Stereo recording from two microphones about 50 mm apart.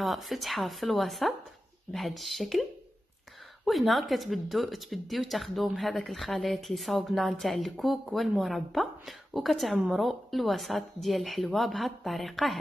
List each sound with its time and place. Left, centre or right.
0.0 s speech: centre
3.6 s speech: centre